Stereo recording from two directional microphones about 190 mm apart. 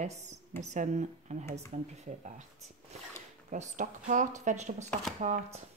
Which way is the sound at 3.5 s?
40° right (ahead or behind).